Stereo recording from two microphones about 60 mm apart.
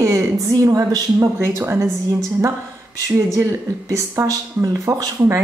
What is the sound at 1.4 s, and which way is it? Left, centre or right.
Speech, right.